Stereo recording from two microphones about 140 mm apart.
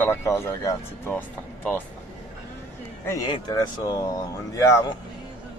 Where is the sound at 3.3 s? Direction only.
30° left (ahead or behind).